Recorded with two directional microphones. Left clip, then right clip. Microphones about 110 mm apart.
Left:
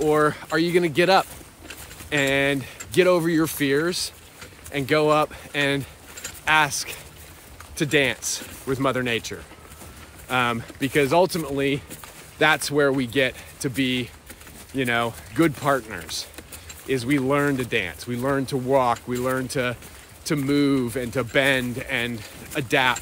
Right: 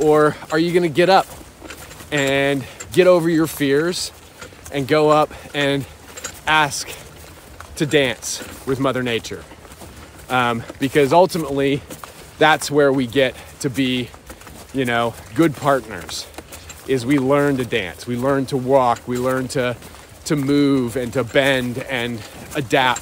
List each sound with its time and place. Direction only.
0.0 s speech: 15° right (ahead or behind)